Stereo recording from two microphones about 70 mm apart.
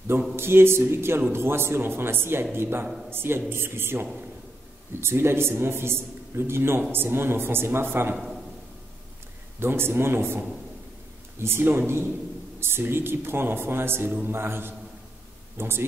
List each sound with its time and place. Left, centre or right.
0.4 s a man's voice: right
9.6 s a man's voice: right